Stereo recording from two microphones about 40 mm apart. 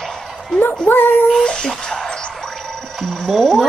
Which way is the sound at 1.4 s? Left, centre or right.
Left.